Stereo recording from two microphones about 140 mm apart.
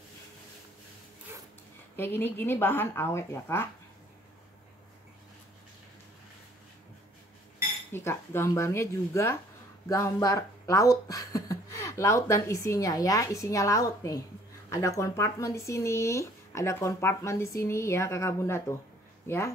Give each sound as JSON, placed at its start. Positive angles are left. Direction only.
{"t": 2.0, "sound": "speech", "side_deg": 15}
{"t": 7.9, "sound": "speech", "side_deg": 15}